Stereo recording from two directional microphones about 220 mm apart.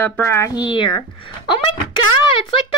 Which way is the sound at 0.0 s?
10° left (ahead or behind).